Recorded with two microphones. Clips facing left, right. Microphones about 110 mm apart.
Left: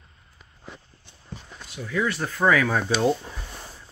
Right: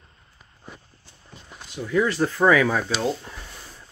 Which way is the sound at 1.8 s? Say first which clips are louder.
Right 5 dB; 25° right (ahead or behind).